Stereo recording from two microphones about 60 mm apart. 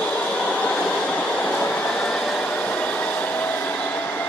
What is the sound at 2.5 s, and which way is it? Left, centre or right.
Hair dryer, left.